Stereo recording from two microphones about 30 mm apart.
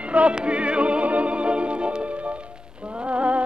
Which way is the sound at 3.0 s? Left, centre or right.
Right.